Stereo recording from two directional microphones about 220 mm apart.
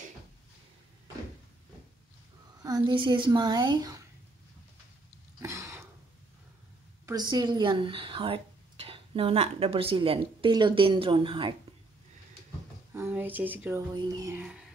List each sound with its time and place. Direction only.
2.6 s speech: 20° right (ahead or behind)
5.4 s a sound: 15° right (ahead or behind)
7.1 s speech: 20° right (ahead or behind)
12.9 s speech: 10° right (ahead or behind)